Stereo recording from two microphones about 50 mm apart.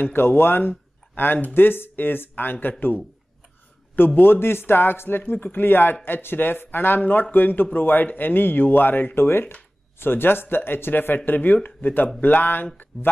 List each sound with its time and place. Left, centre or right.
0.0 s speech: left
3.9 s speech: left
12.6 s a sound: left